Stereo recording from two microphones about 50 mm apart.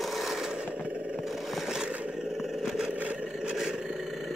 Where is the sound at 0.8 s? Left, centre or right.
Right.